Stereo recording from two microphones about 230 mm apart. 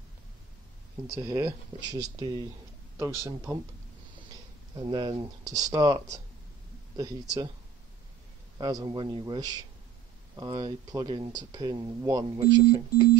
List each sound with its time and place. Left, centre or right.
1.1 s speech: centre
4.7 s speech: centre
8.5 s speech: centre